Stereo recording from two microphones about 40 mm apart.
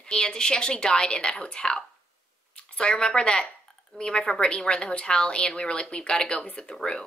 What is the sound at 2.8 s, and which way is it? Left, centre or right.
A woman's voice, left.